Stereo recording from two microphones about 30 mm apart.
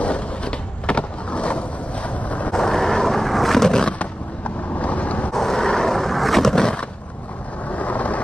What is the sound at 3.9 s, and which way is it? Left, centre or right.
Vehicle, left.